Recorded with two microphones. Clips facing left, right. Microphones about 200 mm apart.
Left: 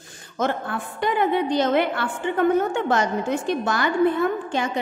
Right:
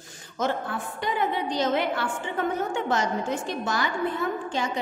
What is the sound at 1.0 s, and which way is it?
A woman's voice, 60° left (ahead or behind).